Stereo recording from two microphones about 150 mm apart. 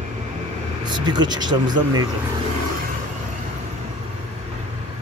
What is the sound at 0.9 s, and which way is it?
Speech, 30° right (ahead or behind).